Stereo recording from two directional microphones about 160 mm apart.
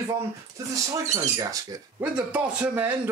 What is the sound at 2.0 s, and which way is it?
Speech, 10° right (ahead or behind).